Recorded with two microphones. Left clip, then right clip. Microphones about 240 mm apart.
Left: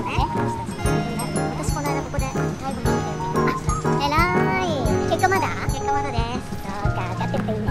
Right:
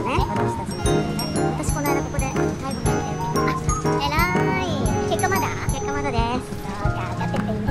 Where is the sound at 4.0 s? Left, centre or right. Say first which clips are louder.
Left 3 dB; left.